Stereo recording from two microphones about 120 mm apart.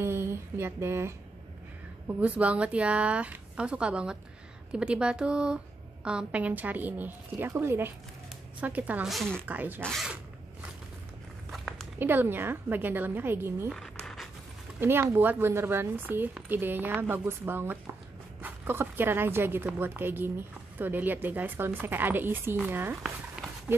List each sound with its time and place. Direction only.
0.0 s speech: 20° right (ahead or behind)
9.0 s speech: centre (ahead or behind)
9.5 s speech: 15° right (ahead or behind)
11.5 s a sound: centre (ahead or behind)
12.0 s speech: 15° right (ahead or behind)
13.7 s a sound: 5° left (ahead or behind)
14.8 s speech: 20° right (ahead or behind)